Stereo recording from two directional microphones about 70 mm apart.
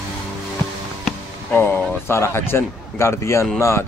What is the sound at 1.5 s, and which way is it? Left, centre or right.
Speech, left.